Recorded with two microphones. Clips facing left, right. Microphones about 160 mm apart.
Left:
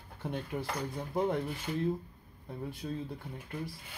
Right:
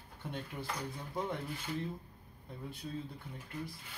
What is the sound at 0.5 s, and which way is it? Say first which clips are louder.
Speech: left 7 dB; 60° left (ahead or behind).